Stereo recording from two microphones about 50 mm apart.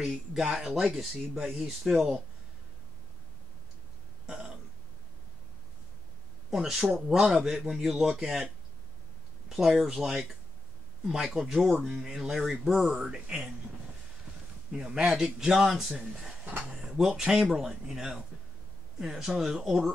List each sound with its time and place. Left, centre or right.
0.3 s speech: centre
4.3 s burping: centre
6.5 s speech: centre
6.8 s speech: centre
9.5 s speech: centre
13.0 s speech: centre
14.7 s speech: centre
16.8 s a sound: centre
17.3 s speech: centre